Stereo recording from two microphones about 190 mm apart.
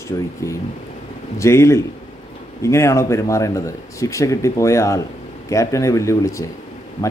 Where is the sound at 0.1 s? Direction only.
20° left (ahead or behind).